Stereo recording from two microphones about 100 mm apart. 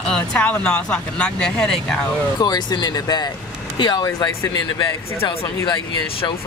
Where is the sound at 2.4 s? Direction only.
45° left (ahead or behind).